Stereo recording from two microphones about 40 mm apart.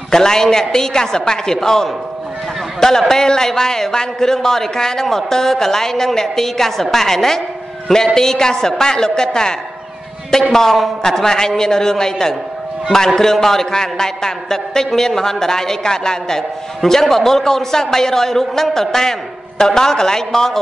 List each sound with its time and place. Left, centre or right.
0.1 s a man's voice: centre